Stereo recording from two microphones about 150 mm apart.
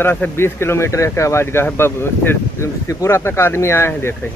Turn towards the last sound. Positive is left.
turn(degrees=15)  # may be behind; listen again after turning